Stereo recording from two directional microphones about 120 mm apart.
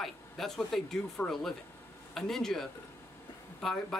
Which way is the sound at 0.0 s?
Centre (ahead or behind).